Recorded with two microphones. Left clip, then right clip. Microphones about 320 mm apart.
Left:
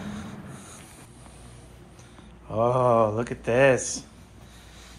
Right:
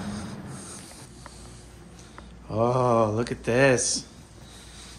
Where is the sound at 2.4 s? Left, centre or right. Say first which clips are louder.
Left 1 dB; centre.